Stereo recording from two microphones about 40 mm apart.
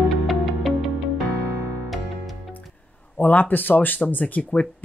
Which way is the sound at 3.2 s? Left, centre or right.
Left.